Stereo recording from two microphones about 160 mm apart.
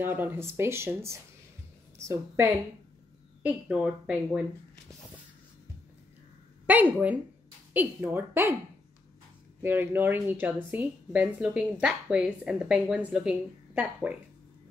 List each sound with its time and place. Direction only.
0.0 s a woman's voice: 10° right (ahead or behind)
3.4 s a woman's voice: 5° right (ahead or behind)
6.6 s a woman's voice: 10° right (ahead or behind)
9.6 s a woman's voice: 15° right (ahead or behind)